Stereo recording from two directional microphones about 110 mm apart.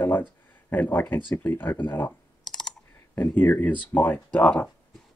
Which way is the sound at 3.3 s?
15° left (ahead or behind).